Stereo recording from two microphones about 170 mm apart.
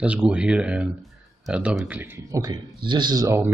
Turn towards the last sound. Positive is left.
turn(degrees=-15)  # may be behind; listen again after turning